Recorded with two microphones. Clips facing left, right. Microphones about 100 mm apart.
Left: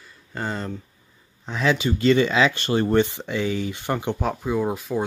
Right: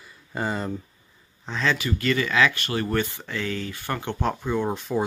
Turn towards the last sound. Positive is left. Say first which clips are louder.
# left 1 dB
turn(degrees=0)  # may be behind; listen again after turning